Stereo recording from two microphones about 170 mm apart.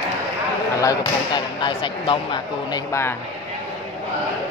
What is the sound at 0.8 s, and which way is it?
Speech, 25° left (ahead or behind).